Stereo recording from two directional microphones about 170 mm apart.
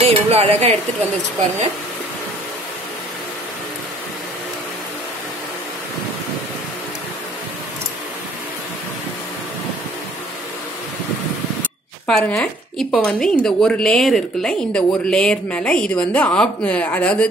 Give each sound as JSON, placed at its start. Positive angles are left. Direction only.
{"t": 0.1, "sound": "speech", "side_deg": -35}
{"t": 12.1, "sound": "a woman's voice", "side_deg": 5}